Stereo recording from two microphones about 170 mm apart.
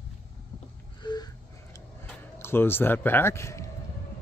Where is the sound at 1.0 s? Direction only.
25° left (ahead or behind).